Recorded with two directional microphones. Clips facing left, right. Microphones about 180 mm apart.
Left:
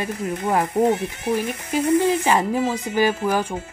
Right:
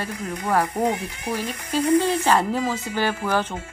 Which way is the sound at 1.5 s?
15° left (ahead or behind).